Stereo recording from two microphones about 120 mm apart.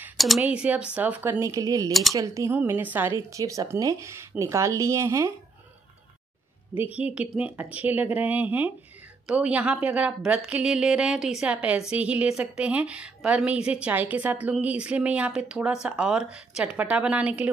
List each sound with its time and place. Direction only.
0.4 s a woman's voice: 10° right (ahead or behind)
6.8 s a woman's voice: 10° right (ahead or behind)